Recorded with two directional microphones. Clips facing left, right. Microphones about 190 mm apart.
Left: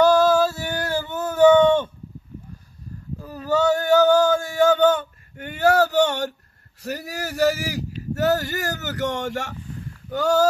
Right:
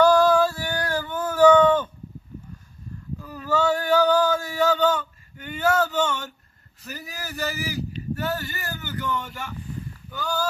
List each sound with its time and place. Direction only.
0.0 s a sound: 25° left (ahead or behind)
3.2 s male singing: 40° left (ahead or behind); by 6.3 s 65° left (ahead or behind)
6.8 s a man's voice: 70° left (ahead or behind)